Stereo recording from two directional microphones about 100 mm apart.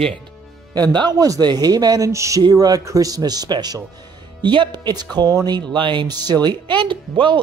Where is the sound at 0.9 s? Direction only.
40° right (ahead or behind).